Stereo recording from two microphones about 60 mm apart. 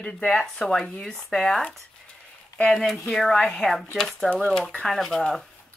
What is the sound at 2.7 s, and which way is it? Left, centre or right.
Speech, centre.